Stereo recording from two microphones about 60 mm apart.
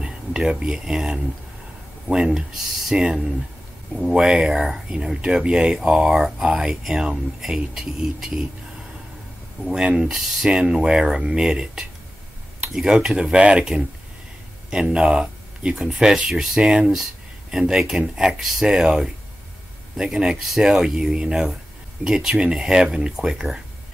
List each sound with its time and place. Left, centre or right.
0.0 s speech: centre
9.7 s speech: centre